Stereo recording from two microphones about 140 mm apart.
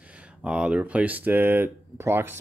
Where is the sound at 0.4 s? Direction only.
10° right (ahead or behind).